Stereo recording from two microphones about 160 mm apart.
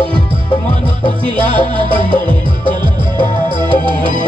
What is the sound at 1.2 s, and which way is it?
Music, 30° right (ahead or behind).